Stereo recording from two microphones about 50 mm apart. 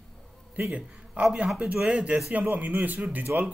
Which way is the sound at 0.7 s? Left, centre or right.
Right.